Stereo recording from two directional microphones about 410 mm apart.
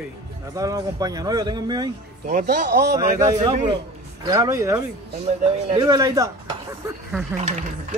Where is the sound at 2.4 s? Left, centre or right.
Right.